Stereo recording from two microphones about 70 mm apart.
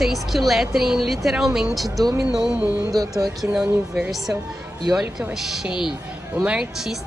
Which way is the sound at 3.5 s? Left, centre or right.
Centre.